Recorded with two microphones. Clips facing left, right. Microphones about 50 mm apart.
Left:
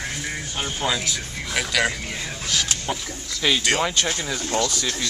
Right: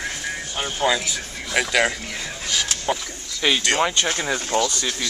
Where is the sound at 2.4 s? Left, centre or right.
Centre.